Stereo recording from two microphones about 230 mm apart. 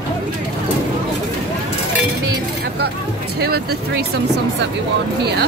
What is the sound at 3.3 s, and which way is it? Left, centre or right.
Speech, right.